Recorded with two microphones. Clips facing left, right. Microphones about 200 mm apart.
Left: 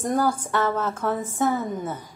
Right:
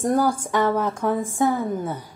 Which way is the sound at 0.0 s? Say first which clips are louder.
Right 3 dB; 10° right (ahead or behind).